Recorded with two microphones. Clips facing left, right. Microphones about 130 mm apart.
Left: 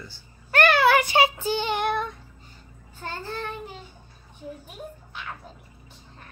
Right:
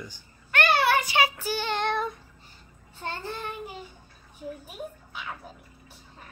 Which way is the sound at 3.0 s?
15° right (ahead or behind).